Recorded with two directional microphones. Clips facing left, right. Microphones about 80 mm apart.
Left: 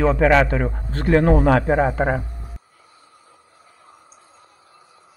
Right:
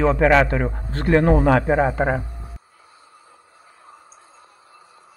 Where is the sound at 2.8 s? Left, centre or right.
Right.